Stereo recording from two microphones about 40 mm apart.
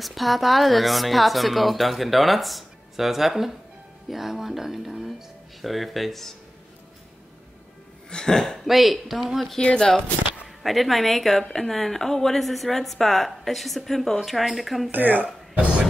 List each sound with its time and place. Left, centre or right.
0.0 s a woman's voice: centre
8.1 s speech: centre
8.6 s a woman's voice: centre
9.8 s speech: centre
10.4 s a woman's voice: centre
14.9 s speech: right
15.5 s speech: right